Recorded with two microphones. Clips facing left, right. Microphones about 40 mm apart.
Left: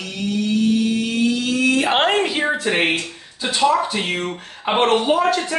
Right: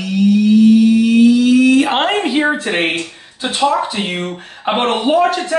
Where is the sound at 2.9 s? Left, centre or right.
Right.